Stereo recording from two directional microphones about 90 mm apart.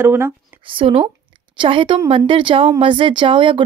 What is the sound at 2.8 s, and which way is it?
Speech, 70° right (ahead or behind).